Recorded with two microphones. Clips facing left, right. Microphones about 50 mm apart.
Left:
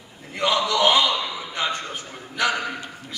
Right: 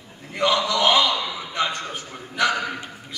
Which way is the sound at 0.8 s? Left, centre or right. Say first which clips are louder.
Left 1 dB; centre.